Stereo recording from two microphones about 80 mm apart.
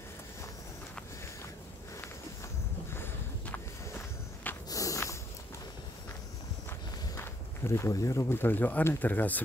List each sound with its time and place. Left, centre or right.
2.9 s walk: left
4.6 s walk: left
7.2 s walk: left
7.9 s speech: left